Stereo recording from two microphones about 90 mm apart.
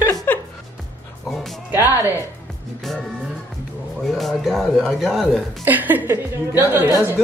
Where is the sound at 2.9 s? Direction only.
5° left (ahead or behind).